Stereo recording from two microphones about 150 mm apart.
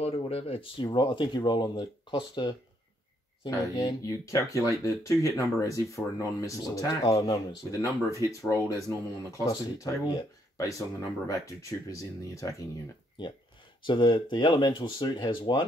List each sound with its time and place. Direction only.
0.0 s speech: 40° left (ahead or behind); by 12.6 s 20° left (ahead or behind)
13.2 s speech: 30° left (ahead or behind)